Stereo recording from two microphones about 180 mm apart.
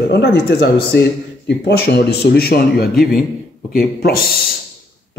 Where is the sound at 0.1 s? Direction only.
65° left (ahead or behind).